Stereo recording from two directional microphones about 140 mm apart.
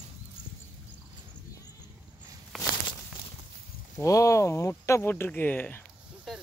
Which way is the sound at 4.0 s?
20° left (ahead or behind).